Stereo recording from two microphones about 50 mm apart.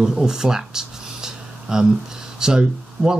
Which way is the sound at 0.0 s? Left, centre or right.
Centre.